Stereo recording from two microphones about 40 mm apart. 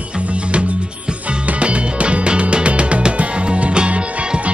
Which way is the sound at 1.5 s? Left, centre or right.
Right.